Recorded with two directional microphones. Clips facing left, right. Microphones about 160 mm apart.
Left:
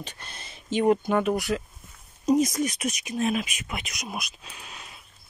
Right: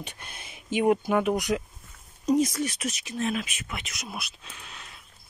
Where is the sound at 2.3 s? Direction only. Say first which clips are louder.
Left 1 dB; 15° left (ahead or behind).